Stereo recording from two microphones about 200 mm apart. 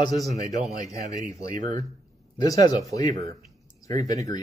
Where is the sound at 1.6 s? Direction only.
40° right (ahead or behind).